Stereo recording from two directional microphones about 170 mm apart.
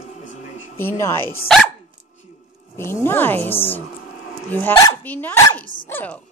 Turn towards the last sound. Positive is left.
turn(degrees=10)  # may be behind; listen again after turning